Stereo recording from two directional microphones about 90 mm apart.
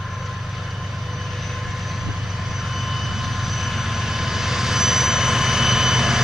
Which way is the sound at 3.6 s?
Centre (ahead or behind).